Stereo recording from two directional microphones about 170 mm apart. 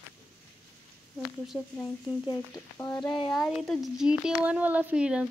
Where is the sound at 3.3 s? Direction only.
Centre (ahead or behind).